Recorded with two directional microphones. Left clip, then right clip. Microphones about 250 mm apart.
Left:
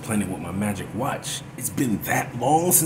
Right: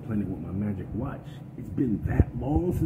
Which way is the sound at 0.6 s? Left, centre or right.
Left.